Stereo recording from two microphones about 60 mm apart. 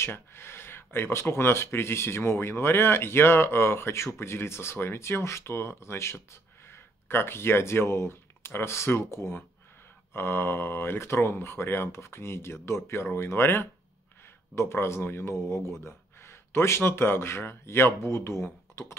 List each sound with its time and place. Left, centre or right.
0.0 s speech: left